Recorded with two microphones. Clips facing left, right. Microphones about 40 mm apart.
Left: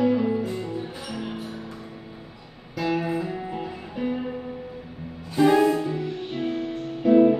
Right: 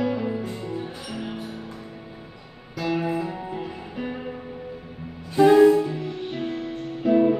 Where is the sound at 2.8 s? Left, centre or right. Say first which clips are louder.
Even; centre.